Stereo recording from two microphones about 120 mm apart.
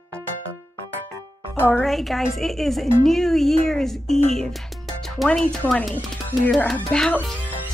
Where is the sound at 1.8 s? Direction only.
Centre (ahead or behind).